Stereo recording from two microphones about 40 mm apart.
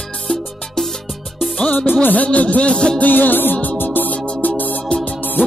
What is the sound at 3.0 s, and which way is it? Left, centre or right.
Music, left.